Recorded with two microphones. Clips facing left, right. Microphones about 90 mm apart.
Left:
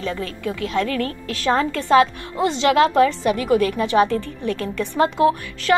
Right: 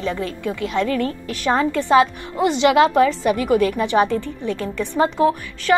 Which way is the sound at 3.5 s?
45° left (ahead or behind).